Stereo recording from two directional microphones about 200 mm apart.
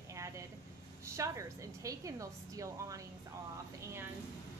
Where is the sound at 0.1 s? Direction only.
15° right (ahead or behind).